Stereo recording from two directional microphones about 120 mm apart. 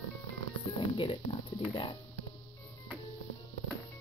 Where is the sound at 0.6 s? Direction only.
45° left (ahead or behind).